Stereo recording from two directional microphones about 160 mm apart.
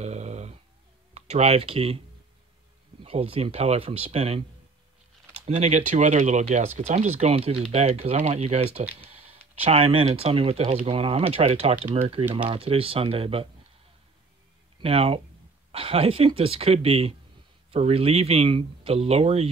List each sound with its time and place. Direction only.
0.0 s dog: 45° right (ahead or behind)
1.1 s speech: 45° right (ahead or behind)
3.0 s speech: 35° right (ahead or behind)
14.8 s speech: 35° right (ahead or behind)